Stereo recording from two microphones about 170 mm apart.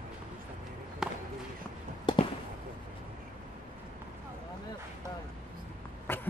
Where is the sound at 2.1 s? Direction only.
25° left (ahead or behind).